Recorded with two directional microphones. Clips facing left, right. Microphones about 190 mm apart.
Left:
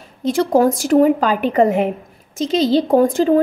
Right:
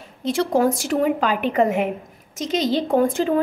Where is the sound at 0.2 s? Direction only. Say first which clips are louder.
Left 4 dB; 40° left (ahead or behind).